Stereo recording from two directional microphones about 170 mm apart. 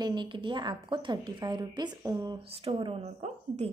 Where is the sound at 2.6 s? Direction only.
35° right (ahead or behind).